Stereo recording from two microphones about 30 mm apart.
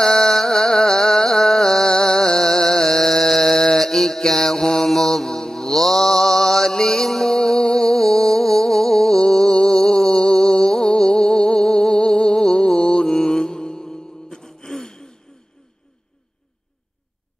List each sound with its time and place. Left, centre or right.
0.0 s music: centre
13.0 s music: centre
14.7 s gasp: centre